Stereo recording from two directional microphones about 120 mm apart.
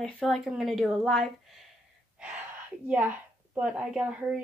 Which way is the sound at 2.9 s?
10° right (ahead or behind).